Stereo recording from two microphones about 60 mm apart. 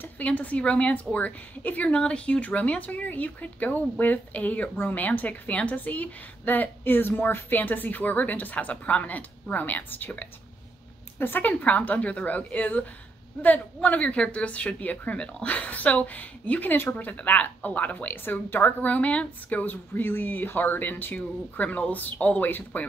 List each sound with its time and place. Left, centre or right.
0.2 s a woman's voice: left
19.9 s speech: left